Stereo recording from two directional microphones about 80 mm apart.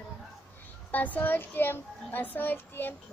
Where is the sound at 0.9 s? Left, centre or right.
Centre.